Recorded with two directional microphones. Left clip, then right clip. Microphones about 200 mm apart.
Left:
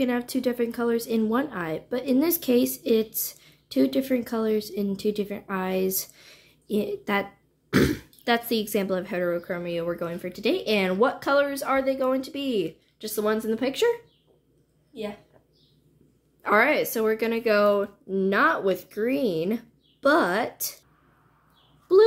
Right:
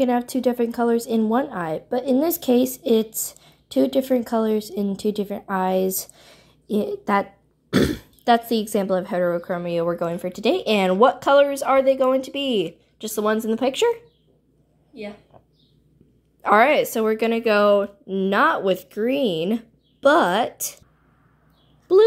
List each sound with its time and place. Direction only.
0.0 s a woman's voice: 15° right (ahead or behind)
16.3 s a woman's voice: 25° right (ahead or behind)